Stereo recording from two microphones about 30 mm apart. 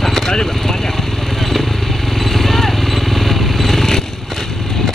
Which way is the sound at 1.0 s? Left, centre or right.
Centre.